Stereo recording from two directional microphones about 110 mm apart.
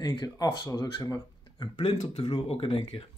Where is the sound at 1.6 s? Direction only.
45° left (ahead or behind).